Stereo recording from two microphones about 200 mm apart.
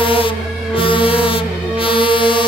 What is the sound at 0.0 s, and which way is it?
Music, 25° left (ahead or behind).